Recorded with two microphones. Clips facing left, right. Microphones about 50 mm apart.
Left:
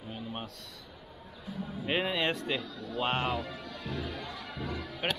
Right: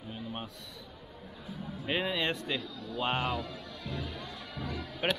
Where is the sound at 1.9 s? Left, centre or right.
Centre.